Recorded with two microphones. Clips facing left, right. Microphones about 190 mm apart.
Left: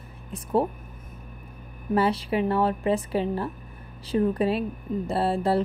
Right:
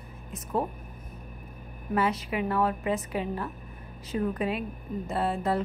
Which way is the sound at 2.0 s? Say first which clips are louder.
Left 4 dB; 30° left (ahead or behind).